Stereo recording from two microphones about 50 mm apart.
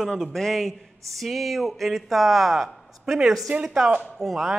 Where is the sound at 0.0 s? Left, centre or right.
Centre.